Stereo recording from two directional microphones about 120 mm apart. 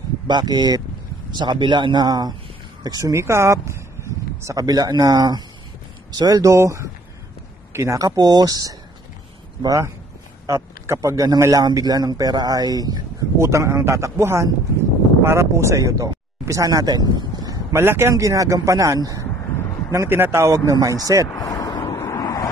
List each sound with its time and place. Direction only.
0.3 s a man's voice: 35° right (ahead or behind)
21.3 s vehicle: 30° left (ahead or behind)